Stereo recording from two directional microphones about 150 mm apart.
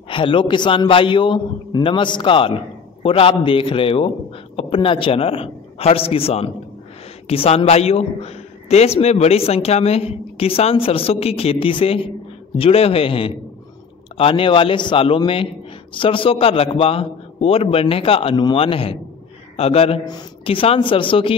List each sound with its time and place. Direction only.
0.1 s a man's voice: 35° left (ahead or behind)
20.1 s a man's voice: 30° left (ahead or behind)